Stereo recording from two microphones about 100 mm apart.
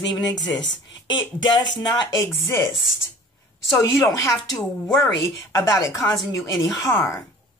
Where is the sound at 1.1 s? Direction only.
50° left (ahead or behind).